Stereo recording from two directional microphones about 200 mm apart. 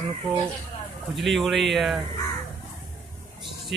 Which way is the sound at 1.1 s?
Centre (ahead or behind).